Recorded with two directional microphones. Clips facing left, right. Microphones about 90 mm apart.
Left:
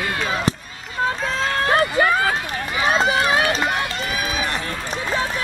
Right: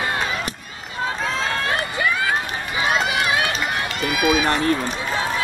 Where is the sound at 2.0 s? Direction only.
40° left (ahead or behind).